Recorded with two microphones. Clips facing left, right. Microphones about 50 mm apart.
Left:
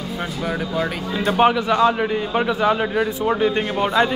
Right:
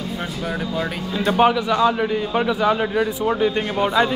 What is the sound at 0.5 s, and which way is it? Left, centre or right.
A man's voice, centre.